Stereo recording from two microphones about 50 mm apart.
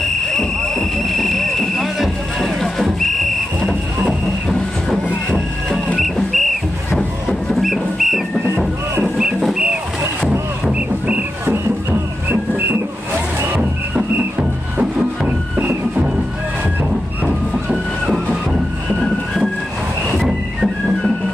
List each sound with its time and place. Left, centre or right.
0.3 s a sound: centre
3.6 s music: centre
5.9 s music: centre
10.7 s music: right
14.8 s music: right
17.6 s music: centre
18.9 s music: centre